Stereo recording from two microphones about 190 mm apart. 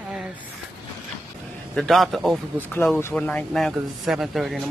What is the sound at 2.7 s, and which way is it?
Speech, 10° left (ahead or behind).